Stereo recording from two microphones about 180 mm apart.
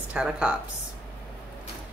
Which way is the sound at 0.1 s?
5° right (ahead or behind).